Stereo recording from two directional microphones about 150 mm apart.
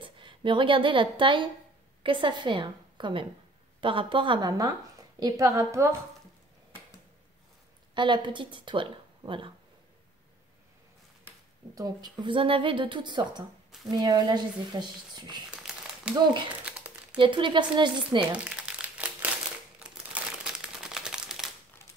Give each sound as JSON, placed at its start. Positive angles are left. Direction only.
{"t": 0.0, "sound": "a woman's voice", "side_deg": -35}
{"t": 7.9, "sound": "speech", "side_deg": -30}
{"t": 11.7, "sound": "a woman's voice", "side_deg": -25}
{"t": 15.5, "sound": "a sound", "side_deg": -5}
{"t": 16.6, "sound": "crumpling", "side_deg": -10}
{"t": 17.2, "sound": "a woman's voice", "side_deg": -35}
{"t": 18.4, "sound": "crumpling", "side_deg": -10}
{"t": 20.4, "sound": "crumpling", "side_deg": -5}